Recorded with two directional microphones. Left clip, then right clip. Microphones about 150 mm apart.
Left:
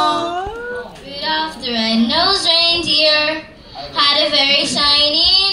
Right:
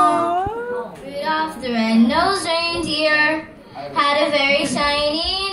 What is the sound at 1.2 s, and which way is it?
Female singing, 15° right (ahead or behind).